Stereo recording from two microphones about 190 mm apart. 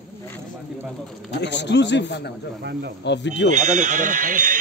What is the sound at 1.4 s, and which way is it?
A man's voice, 65° left (ahead or behind).